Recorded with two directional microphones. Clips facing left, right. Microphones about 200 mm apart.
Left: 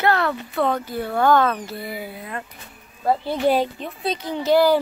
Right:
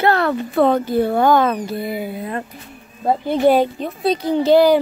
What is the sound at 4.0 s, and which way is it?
Speech, 35° right (ahead or behind).